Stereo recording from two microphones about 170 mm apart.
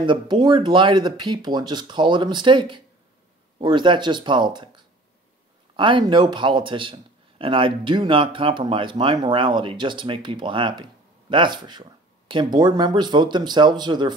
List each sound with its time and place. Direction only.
0.0 s a man's voice: 30° right (ahead or behind)